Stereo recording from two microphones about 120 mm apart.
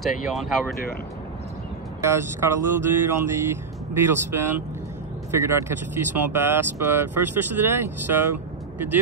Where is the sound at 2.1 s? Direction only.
25° right (ahead or behind).